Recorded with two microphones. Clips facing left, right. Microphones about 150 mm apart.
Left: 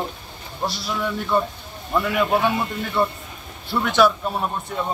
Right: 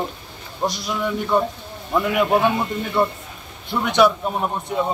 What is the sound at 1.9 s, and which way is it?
A man's voice, 10° right (ahead or behind).